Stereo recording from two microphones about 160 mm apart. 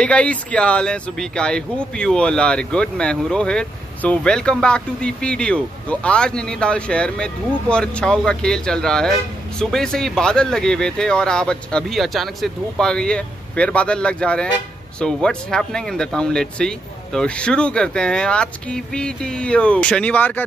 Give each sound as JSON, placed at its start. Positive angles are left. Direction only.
{"t": 0.0, "sound": "speech", "side_deg": 5}